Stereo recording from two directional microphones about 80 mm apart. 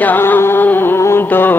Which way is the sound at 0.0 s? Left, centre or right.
Left.